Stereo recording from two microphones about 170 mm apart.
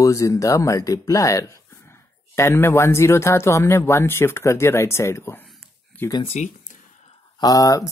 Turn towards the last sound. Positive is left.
turn(degrees=20)  # may be behind; listen again after turning